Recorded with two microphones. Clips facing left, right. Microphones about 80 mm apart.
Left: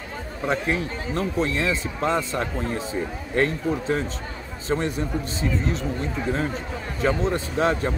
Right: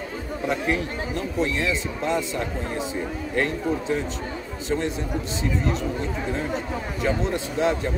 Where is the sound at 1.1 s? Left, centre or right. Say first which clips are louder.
Left 2 dB; left.